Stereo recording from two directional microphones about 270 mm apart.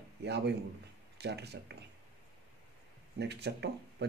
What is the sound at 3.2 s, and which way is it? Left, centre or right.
Speech, right.